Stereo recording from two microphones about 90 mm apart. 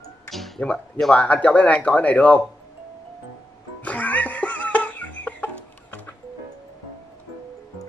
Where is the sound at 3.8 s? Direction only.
15° left (ahead or behind).